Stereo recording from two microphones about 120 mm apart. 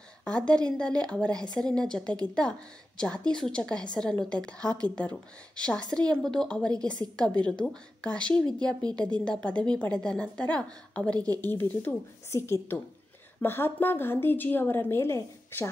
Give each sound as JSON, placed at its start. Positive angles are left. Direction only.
{"t": 0.2, "sound": "a woman's voice", "side_deg": 10}
{"t": 11.1, "sound": "speech", "side_deg": -30}
{"t": 11.4, "sound": "a woman's voice", "side_deg": 15}